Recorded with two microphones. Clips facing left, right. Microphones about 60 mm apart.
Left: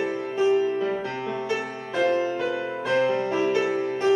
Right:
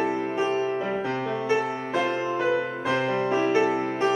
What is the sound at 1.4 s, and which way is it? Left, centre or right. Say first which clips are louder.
Music: right 4 dB; centre.